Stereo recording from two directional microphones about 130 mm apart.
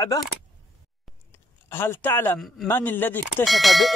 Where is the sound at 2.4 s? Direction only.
Centre (ahead or behind).